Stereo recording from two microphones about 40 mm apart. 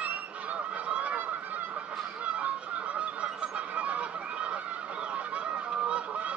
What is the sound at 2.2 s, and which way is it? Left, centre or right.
Goose, right.